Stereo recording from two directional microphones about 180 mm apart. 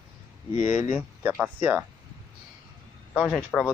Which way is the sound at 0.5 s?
40° left (ahead or behind).